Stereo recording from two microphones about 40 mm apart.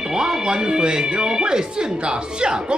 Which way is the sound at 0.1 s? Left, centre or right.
Centre.